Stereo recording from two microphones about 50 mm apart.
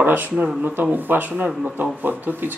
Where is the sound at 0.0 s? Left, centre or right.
Right.